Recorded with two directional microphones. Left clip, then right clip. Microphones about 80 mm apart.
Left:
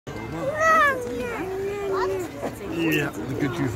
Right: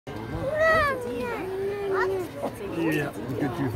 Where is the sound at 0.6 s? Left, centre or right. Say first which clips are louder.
Left 3 dB; centre.